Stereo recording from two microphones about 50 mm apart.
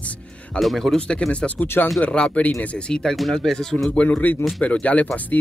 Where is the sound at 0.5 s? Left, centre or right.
Centre.